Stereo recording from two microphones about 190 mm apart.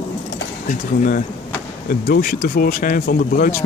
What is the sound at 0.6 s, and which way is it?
Speech, 45° left (ahead or behind).